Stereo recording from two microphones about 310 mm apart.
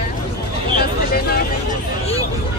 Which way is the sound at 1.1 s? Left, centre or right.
Left.